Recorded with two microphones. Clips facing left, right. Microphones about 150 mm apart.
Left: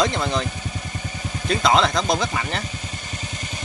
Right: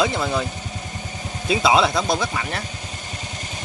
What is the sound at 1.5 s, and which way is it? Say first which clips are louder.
Speech: right 1 dB; 5° right (ahead or behind).